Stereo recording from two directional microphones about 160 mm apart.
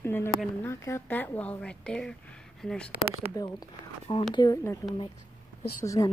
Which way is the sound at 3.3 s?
25° left (ahead or behind).